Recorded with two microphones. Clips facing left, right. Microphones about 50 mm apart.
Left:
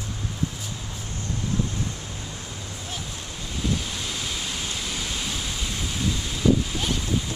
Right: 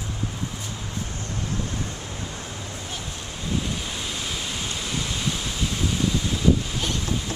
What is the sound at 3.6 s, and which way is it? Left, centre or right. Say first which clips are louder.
Waves: left 2 dB; centre.